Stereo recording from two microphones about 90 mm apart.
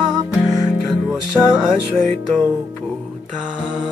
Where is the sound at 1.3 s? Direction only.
10° right (ahead or behind).